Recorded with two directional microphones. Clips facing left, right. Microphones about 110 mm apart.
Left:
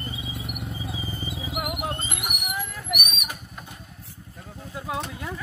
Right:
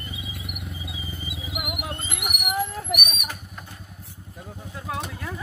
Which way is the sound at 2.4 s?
30° right (ahead or behind).